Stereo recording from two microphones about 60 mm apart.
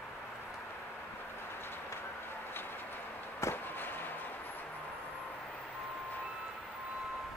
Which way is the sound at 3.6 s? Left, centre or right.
Left.